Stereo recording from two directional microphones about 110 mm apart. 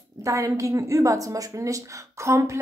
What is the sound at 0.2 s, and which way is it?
Speech, 30° right (ahead or behind).